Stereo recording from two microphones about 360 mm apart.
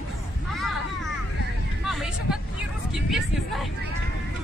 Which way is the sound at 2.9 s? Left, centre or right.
Centre.